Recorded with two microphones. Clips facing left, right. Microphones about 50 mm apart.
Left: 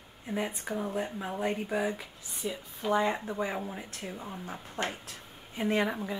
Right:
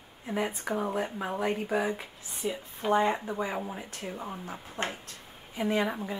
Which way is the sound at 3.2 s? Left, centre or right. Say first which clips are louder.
Right 1 dB; centre.